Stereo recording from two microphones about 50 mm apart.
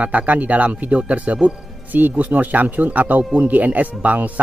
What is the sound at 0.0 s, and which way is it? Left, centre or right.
Speech, right.